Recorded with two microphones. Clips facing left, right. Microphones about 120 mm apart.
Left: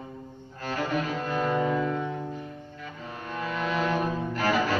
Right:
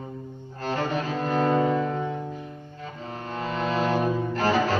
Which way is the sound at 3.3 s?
30° right (ahead or behind).